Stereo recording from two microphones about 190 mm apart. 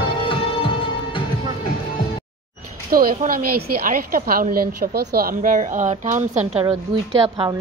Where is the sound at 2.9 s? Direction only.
50° right (ahead or behind).